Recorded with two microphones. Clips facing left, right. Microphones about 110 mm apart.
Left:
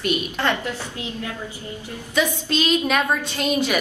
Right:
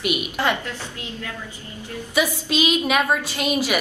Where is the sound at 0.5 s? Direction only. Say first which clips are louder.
Left 2 dB; 20° left (ahead or behind).